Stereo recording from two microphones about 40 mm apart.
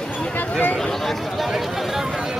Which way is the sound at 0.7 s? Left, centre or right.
Centre.